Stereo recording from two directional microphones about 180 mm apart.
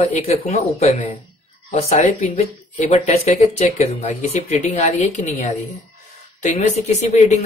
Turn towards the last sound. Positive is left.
turn(degrees=40)  # may be behind; listen again after turning